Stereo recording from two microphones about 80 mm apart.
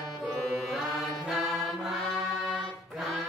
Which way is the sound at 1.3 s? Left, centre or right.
Centre.